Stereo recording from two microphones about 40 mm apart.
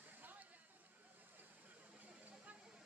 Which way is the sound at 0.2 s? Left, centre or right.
Right.